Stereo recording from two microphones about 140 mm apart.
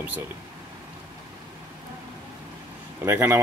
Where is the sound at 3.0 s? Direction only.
15° right (ahead or behind).